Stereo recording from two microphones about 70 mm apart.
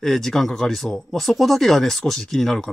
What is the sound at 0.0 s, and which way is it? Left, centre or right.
Speech, centre.